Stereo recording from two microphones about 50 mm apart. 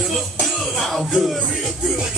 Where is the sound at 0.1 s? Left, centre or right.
Centre.